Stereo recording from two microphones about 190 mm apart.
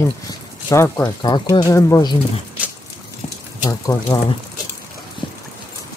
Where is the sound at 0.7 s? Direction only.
15° left (ahead or behind).